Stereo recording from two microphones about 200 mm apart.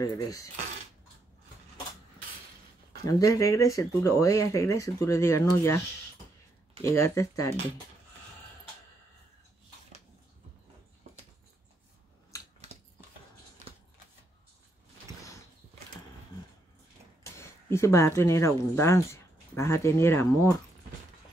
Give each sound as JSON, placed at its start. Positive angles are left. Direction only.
{"t": 0.0, "sound": "speech", "side_deg": 15}
{"t": 3.1, "sound": "speech", "side_deg": 15}
{"t": 6.8, "sound": "speech", "side_deg": 15}
{"t": 12.3, "sound": "scissors", "side_deg": 15}
{"t": 17.2, "sound": "speech", "side_deg": 15}